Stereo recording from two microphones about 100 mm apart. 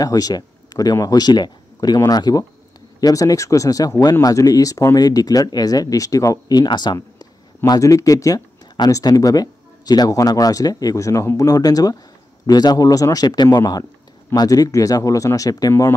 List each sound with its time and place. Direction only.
0.0 s speech: 35° left (ahead or behind)